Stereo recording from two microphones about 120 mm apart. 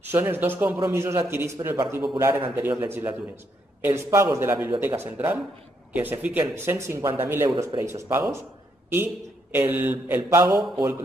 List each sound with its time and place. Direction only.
0.0 s speech: 15° right (ahead or behind)
7.4 s speech: 30° right (ahead or behind)